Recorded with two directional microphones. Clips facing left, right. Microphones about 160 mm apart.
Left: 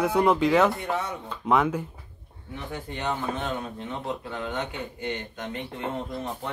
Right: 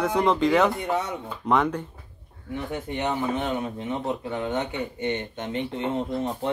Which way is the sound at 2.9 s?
15° right (ahead or behind).